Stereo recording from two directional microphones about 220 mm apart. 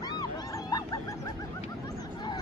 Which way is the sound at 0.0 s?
15° left (ahead or behind).